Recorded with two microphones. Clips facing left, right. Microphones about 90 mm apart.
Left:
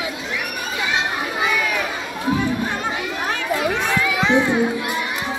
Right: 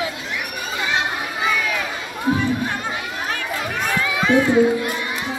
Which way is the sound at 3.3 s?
20° left (ahead or behind).